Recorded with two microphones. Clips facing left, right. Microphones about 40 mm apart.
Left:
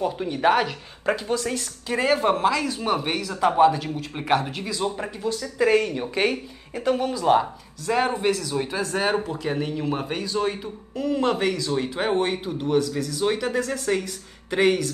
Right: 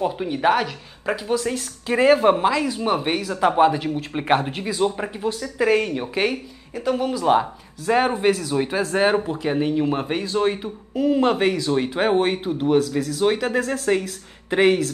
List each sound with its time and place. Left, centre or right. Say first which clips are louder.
0.0 s speech: right 1 dB; centre
1.9 s speech: right 5 dB; right
5.4 s speech: even; centre
6.7 s speech: even; centre
7.1 s speech: right 2 dB; centre
7.8 s speech: right 4 dB; right
10.2 s speech: right 4 dB; right
10.5 s speech: right 5 dB; right